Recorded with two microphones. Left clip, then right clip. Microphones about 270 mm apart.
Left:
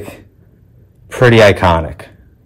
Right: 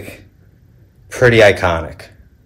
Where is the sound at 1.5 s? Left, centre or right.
Left.